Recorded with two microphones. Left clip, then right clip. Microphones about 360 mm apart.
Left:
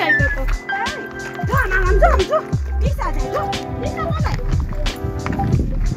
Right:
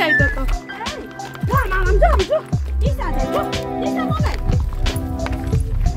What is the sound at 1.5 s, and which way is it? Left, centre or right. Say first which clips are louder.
Music: left 1 dB; centre.